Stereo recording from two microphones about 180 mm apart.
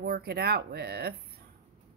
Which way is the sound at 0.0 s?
60° right (ahead or behind).